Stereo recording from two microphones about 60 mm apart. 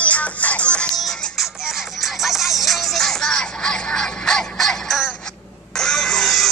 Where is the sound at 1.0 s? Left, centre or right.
Centre.